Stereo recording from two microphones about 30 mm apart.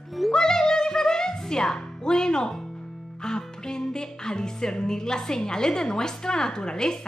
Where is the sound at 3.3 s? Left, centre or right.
Left.